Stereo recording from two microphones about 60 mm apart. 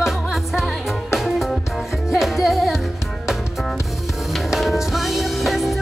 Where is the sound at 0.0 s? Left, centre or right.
Centre.